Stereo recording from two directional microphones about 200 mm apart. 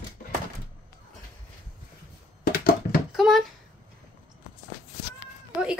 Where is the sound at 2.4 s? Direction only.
50° left (ahead or behind).